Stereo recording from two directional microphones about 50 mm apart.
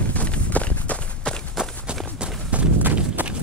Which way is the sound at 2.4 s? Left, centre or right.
Right.